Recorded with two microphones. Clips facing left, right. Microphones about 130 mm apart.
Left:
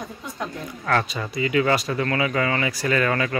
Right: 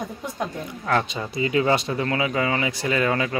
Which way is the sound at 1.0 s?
25° right (ahead or behind).